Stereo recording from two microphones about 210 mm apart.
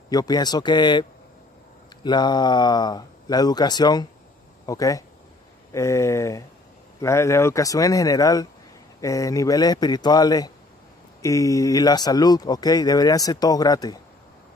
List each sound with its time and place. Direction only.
0.1 s speech: 20° left (ahead or behind)
2.0 s speech: 20° left (ahead or behind)